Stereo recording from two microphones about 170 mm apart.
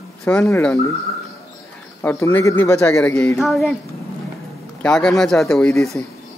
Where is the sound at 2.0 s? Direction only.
10° left (ahead or behind).